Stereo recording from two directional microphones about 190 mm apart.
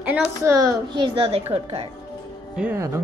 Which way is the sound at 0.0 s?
10° right (ahead or behind).